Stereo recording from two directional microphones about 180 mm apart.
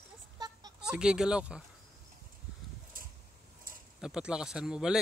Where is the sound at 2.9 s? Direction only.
50° right (ahead or behind).